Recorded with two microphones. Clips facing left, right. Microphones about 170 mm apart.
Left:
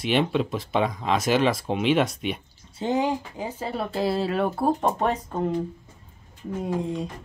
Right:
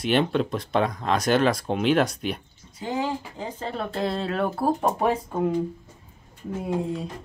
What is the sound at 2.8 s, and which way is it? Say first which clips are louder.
Speech: left 4 dB; 20° left (ahead or behind).